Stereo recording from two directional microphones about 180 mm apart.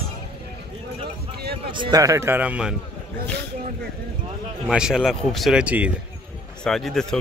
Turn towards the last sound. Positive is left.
turn(degrees=5)  # may be behind; listen again after turning